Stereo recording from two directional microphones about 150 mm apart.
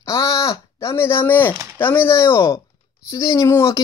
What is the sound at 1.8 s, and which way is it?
Speech, 15° left (ahead or behind).